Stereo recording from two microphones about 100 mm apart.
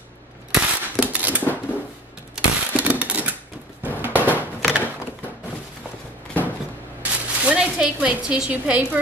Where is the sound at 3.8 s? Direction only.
15° right (ahead or behind).